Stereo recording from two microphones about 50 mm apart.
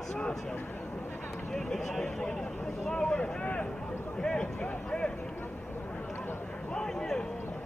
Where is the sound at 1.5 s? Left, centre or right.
Centre.